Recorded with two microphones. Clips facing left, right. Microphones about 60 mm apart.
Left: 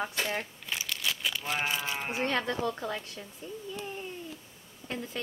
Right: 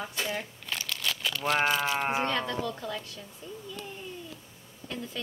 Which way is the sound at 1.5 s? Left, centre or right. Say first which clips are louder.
Right 7 dB; right.